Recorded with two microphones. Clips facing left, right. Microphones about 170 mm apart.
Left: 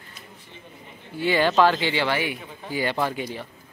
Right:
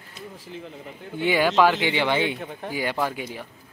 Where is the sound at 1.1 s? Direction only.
15° right (ahead or behind).